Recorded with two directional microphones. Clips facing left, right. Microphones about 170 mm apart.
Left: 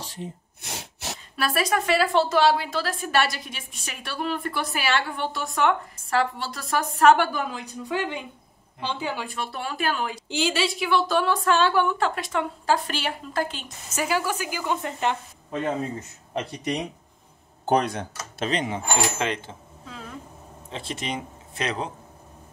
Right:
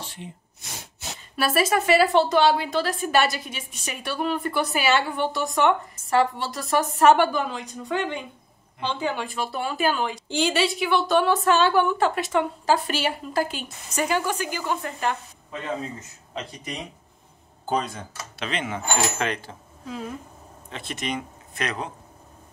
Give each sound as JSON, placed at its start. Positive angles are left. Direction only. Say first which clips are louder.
{"t": 0.0, "sound": "a sound", "louder": "left 3 dB", "side_deg": 40}
{"t": 1.3, "sound": "a woman's voice", "louder": "right 3 dB", "side_deg": 0}
{"t": 13.8, "sound": "a woman's voice", "louder": "right 1 dB", "side_deg": 5}
{"t": 14.8, "sound": "speech", "louder": "left 1 dB", "side_deg": 20}
{"t": 16.3, "sound": "speech", "louder": "left 6 dB", "side_deg": 65}
{"t": 18.4, "sound": "speech", "louder": "left 3 dB", "side_deg": 40}
{"t": 19.1, "sound": "speech", "louder": "even", "side_deg": 20}
{"t": 20.7, "sound": "speech", "louder": "right 1 dB", "side_deg": 30}